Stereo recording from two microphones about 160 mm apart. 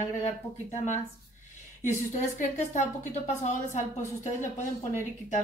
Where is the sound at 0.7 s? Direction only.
45° left (ahead or behind).